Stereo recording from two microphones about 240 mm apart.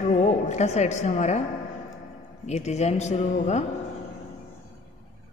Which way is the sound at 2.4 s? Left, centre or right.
Left.